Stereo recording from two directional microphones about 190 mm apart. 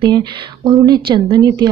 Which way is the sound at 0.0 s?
25° right (ahead or behind).